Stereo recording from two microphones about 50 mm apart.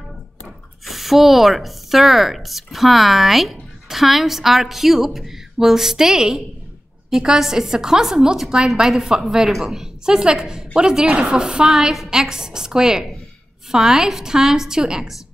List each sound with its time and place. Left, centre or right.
0.8 s a woman's voice: centre